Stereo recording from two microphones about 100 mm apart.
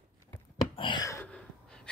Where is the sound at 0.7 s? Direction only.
55° left (ahead or behind).